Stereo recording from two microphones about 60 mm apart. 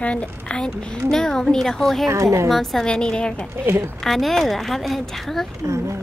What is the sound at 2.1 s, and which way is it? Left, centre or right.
Speech, right.